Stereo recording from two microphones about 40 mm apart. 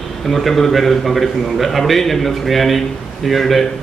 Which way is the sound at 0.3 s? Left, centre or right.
Centre.